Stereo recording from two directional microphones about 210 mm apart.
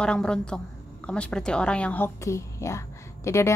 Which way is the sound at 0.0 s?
5° left (ahead or behind).